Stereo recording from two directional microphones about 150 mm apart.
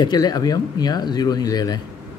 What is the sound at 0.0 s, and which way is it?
A man's voice, 25° left (ahead or behind).